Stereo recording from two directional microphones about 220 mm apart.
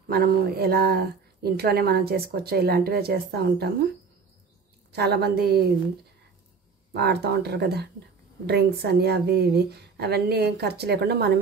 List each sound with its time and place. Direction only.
0.1 s speech: 45° right (ahead or behind)
4.9 s speech: 45° right (ahead or behind)
6.9 s speech: 45° right (ahead or behind)